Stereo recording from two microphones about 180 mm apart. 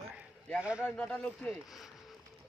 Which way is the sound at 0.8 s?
5° left (ahead or behind).